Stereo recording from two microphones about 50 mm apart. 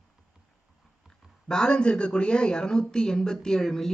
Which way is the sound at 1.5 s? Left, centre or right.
Centre.